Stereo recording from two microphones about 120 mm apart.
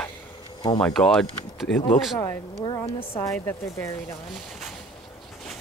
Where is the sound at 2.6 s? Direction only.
40° left (ahead or behind).